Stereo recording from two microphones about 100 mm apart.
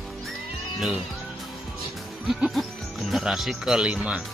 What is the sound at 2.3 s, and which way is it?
Speech, centre (ahead or behind).